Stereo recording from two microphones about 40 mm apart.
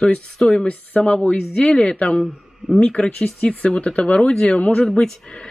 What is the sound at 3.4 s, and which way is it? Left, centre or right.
Speech, left.